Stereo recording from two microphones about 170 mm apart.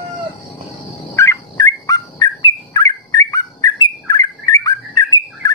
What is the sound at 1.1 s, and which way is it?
Dog, 20° left (ahead or behind).